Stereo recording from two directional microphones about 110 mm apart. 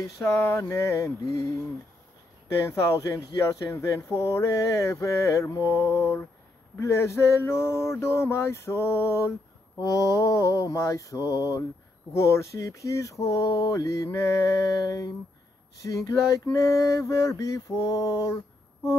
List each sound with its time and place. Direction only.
0.3 s speech: 25° left (ahead or behind)
9.8 s mantra: 30° left (ahead or behind)
12.1 s speech: 25° left (ahead or behind)
15.8 s mantra: 30° left (ahead or behind)
16.5 s speech: 30° left (ahead or behind)